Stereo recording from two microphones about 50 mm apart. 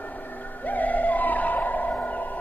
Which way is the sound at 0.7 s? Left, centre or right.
Left.